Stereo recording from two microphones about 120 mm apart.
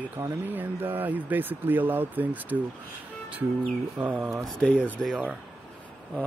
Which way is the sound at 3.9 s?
15° right (ahead or behind).